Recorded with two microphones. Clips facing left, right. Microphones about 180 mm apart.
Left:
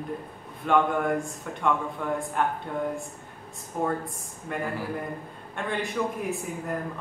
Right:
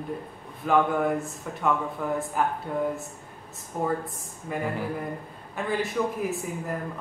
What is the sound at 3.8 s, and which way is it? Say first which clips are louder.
A man's voice: right 2 dB; centre (ahead or behind).